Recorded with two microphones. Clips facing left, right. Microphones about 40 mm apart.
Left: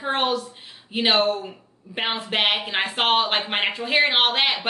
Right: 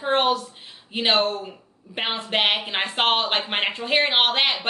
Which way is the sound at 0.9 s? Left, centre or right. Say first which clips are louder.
Left 1 dB; centre.